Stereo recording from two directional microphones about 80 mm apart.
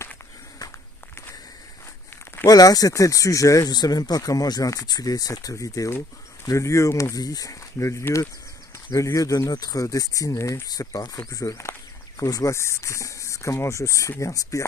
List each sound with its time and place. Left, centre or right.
2.4 s speech: left
7.8 s speech: left